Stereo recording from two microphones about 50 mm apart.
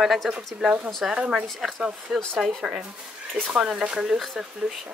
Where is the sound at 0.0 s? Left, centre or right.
Centre.